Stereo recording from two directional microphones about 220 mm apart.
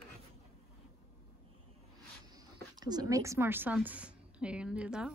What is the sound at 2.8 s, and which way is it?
A woman's voice, 15° right (ahead or behind).